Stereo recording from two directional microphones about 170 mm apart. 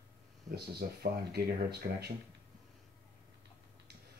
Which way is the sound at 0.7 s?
70° right (ahead or behind).